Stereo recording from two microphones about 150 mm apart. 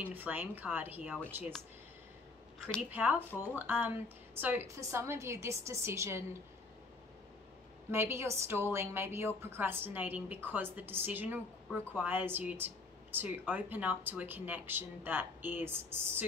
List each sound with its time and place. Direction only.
0.1 s a woman's voice: 10° right (ahead or behind)
2.9 s a woman's voice: 10° right (ahead or behind)
7.9 s a woman's voice: 15° right (ahead or behind)